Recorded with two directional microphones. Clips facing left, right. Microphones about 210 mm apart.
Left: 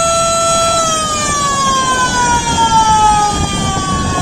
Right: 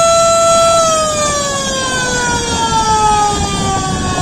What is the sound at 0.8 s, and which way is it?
Emergency vehicle, 35° right (ahead or behind).